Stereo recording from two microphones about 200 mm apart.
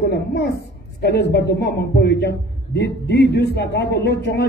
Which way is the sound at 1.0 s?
55° left (ahead or behind).